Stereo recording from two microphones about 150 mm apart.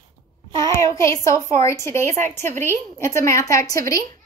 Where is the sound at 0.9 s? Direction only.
20° left (ahead or behind).